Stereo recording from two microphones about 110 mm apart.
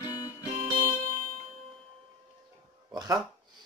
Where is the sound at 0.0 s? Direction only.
35° left (ahead or behind).